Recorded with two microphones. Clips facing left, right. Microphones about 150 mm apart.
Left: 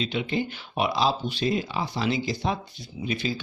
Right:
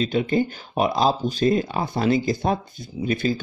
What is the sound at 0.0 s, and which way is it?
Speech, 45° right (ahead or behind).